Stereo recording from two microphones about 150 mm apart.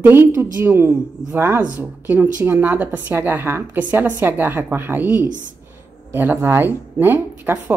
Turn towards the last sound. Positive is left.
turn(degrees=-10)  # may be behind; listen again after turning